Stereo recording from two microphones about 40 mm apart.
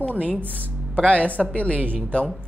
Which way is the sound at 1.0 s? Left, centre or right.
Left.